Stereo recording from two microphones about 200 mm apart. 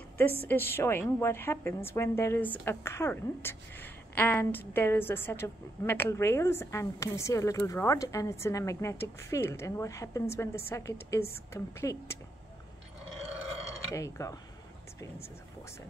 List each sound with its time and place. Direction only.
0.4 s a woman's voice: 10° left (ahead or behind)
13.9 s a woman's voice: 15° left (ahead or behind)